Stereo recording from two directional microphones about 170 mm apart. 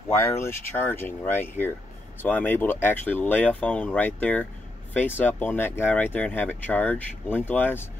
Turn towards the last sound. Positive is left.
turn(degrees=10)  # may be behind; listen again after turning